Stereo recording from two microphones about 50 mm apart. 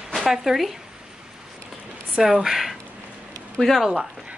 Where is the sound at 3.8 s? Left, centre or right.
Centre.